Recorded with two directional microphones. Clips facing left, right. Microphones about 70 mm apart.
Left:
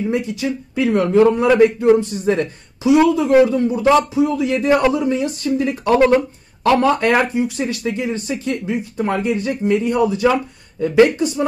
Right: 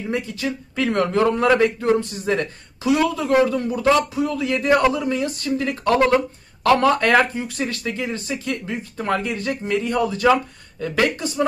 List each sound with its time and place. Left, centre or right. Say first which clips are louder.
0.1 s a man's voice: left 4 dB; centre
0.8 s a man's voice: left 5 dB; centre
2.2 s a man's voice: left 4 dB; left
8.6 s a man's voice: left 4 dB; centre